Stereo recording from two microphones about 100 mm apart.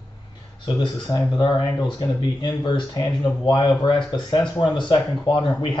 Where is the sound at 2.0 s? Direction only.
50° left (ahead or behind).